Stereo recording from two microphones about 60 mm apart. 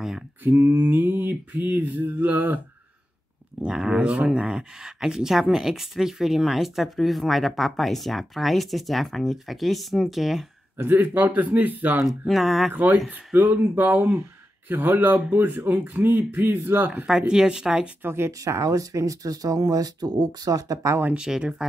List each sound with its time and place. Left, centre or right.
0.4 s mantra: right
3.6 s speech: centre
10.8 s mantra: right
12.1 s speech: centre
13.1 s mantra: right
17.3 s speech: centre
18.0 s speech: right
18.4 s speech: right
21.1 s speech: centre